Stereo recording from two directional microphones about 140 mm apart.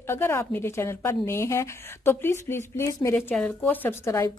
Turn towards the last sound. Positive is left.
turn(degrees=20)  # may be behind; listen again after turning